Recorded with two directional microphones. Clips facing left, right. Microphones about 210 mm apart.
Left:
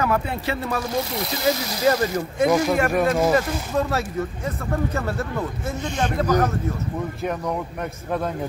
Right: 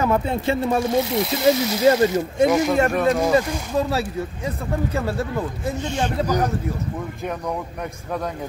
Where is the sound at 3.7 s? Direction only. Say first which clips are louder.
Right 1 dB; 10° right (ahead or behind).